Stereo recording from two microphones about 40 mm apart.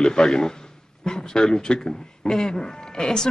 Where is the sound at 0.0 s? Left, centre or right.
Centre.